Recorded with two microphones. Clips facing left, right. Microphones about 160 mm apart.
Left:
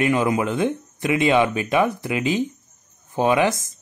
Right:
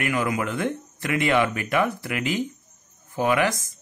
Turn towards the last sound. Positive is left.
turn(degrees=20)  # may be behind; listen again after turning